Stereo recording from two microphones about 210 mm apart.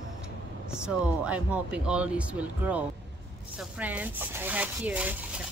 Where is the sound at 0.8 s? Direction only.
5° right (ahead or behind).